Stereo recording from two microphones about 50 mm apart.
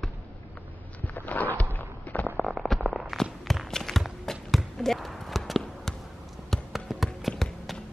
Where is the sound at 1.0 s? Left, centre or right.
Left.